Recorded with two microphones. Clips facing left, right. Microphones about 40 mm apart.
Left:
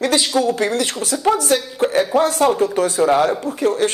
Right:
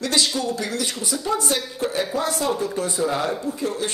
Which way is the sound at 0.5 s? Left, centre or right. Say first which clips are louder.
Left 7 dB; left.